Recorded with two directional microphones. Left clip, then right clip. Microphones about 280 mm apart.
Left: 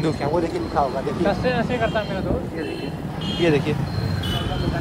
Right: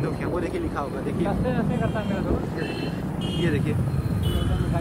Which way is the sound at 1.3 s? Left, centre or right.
Left.